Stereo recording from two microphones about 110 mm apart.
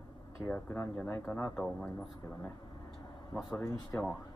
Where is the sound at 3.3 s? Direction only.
Centre (ahead or behind).